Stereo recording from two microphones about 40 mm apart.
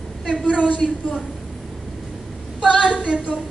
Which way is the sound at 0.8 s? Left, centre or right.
Centre.